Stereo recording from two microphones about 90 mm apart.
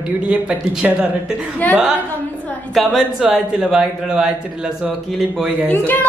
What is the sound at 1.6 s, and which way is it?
Speech, 20° left (ahead or behind).